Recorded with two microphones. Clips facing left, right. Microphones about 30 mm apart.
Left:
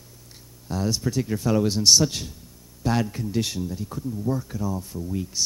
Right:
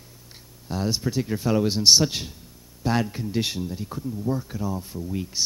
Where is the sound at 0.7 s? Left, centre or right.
Right.